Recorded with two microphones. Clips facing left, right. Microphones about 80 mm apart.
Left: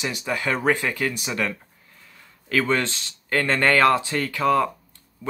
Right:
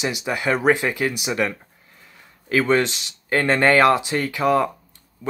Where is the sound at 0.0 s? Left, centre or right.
Centre.